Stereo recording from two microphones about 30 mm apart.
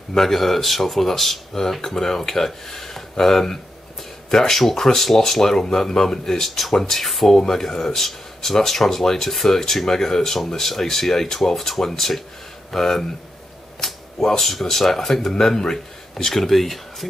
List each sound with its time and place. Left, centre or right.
0.1 s speech: centre
7.2 s speech: centre
14.4 s speech: centre
16.4 s speech: centre